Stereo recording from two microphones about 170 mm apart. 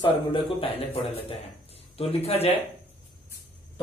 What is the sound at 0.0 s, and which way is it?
A man's voice, 30° left (ahead or behind).